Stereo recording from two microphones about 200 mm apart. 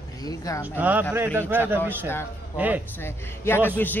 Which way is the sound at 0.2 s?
20° left (ahead or behind).